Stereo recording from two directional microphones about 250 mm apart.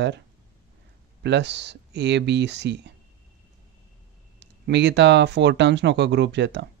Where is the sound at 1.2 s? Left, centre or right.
Right.